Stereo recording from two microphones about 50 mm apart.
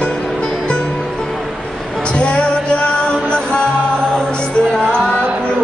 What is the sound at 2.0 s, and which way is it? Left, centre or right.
Music, left.